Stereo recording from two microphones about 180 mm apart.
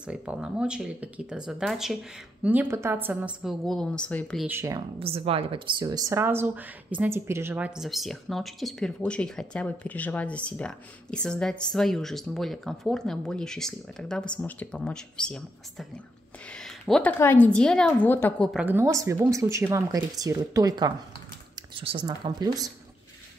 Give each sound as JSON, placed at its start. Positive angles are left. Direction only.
{"t": 0.0, "sound": "a woman's voice", "side_deg": -5}
{"t": 4.5, "sound": "speech", "side_deg": -15}
{"t": 4.9, "sound": "a woman's voice", "side_deg": -30}
{"t": 16.5, "sound": "a sound", "side_deg": 0}
{"t": 17.2, "sound": "a woman's voice", "side_deg": 10}
{"t": 18.5, "sound": "speech", "side_deg": -10}